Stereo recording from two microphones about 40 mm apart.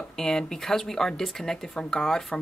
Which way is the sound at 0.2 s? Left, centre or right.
Centre.